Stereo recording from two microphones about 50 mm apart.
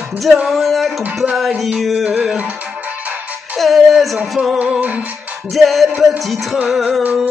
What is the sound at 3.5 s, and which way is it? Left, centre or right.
Music, centre.